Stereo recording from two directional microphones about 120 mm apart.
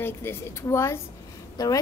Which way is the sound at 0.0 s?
20° left (ahead or behind).